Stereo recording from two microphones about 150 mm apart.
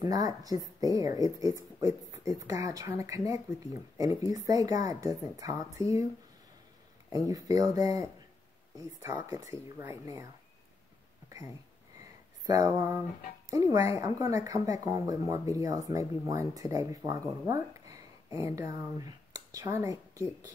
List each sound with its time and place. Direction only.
0.0 s speech: 25° right (ahead or behind)
7.1 s speech: 25° right (ahead or behind)
9.2 s speech: 20° right (ahead or behind)
11.2 s a sound: 20° right (ahead or behind)
12.4 s speech: 20° right (ahead or behind)